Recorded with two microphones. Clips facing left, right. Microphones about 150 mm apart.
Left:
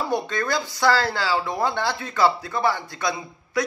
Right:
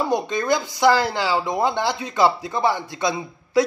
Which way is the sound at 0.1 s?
15° right (ahead or behind).